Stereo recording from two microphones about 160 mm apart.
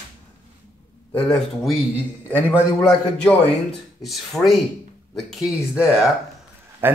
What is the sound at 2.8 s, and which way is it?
A man's voice, 5° left (ahead or behind).